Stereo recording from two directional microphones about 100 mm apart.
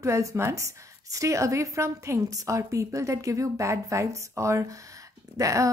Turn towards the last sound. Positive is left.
turn(degrees=-35)  # may be behind; listen again after turning